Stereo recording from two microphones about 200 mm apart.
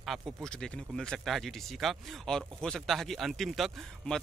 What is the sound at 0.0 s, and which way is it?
Speech, centre (ahead or behind).